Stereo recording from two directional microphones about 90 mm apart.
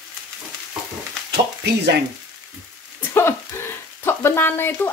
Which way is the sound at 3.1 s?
25° left (ahead or behind).